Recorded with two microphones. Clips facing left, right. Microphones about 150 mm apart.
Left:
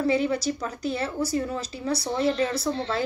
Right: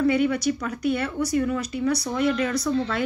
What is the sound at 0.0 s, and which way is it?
Speech, 30° left (ahead or behind).